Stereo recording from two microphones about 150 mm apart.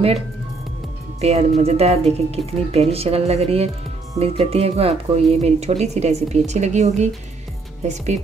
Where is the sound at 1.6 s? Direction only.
45° right (ahead or behind).